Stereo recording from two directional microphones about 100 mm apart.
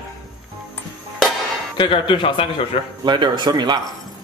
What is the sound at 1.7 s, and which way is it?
Speech, 55° left (ahead or behind).